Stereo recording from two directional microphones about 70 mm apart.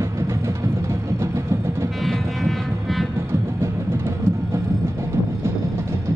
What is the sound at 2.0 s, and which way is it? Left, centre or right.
Vehicle, centre.